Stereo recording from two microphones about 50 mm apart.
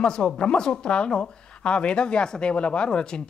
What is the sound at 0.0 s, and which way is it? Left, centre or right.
Speech, centre.